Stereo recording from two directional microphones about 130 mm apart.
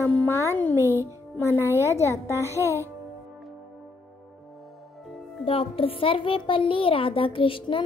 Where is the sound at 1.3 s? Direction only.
20° left (ahead or behind).